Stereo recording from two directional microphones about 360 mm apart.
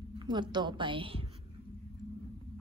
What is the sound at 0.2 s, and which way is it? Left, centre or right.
A woman's voice, centre.